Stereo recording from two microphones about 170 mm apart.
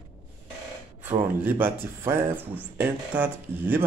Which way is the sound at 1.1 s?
10° right (ahead or behind).